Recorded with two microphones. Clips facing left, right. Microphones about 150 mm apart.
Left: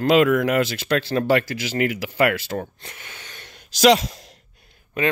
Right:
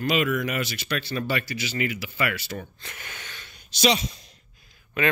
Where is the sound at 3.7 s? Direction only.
90° left.